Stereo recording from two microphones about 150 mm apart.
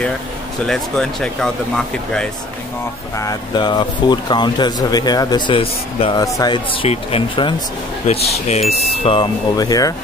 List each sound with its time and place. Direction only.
0.7 s speech: 5° left (ahead or behind)
3.2 s speech: 25° left (ahead or behind)
5.6 s speech: 40° left (ahead or behind)
6.1 s speech: 25° left (ahead or behind)